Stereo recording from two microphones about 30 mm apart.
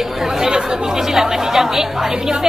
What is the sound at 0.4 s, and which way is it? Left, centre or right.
Speech, right.